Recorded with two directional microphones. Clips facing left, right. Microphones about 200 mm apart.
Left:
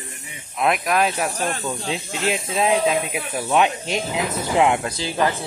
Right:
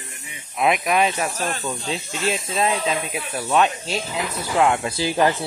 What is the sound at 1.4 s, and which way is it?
Speech, 10° left (ahead or behind).